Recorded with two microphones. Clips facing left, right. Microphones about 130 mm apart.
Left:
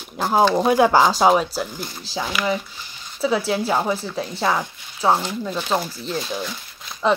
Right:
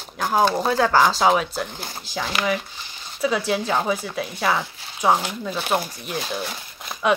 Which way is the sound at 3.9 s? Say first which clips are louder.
Left 1 dB; 5° right (ahead or behind).